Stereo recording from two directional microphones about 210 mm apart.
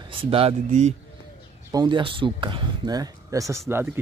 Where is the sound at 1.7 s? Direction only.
20° right (ahead or behind).